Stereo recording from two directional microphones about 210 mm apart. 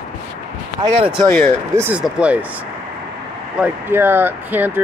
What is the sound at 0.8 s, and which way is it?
Speech, 20° right (ahead or behind).